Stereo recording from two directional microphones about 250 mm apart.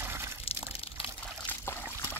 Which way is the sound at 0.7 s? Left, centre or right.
Left.